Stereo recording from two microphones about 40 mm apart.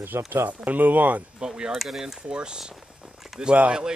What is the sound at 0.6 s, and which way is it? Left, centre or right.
Speech, right.